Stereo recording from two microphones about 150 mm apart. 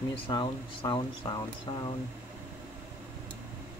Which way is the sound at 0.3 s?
25° left (ahead or behind).